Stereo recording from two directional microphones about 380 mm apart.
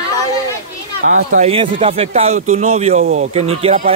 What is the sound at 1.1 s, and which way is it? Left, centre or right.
Speech, centre.